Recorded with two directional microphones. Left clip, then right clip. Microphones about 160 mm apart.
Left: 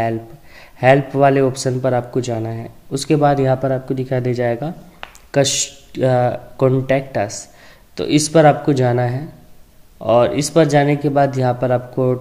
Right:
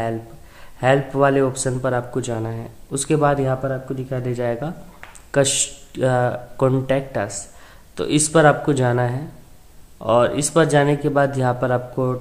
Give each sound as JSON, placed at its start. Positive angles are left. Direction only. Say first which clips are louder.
{"t": 0.6, "sound": "a man's voice", "louder": "left 5 dB", "side_deg": 20}
{"t": 3.6, "sound": "a man's voice", "louder": "left 6 dB", "side_deg": 25}